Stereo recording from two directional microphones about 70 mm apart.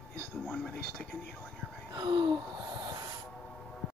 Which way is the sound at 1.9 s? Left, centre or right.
Right.